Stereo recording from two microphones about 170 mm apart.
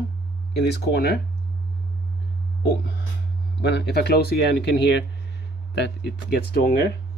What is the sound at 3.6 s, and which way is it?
Speech, 80° left.